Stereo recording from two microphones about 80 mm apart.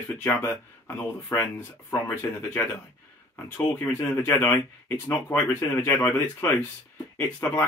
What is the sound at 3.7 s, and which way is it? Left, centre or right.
Speech, left.